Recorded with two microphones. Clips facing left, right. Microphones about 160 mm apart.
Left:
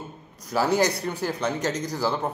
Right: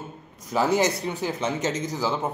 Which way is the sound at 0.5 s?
Centre (ahead or behind).